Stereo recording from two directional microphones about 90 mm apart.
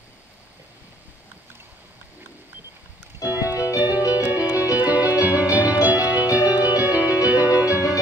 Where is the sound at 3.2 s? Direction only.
40° left (ahead or behind).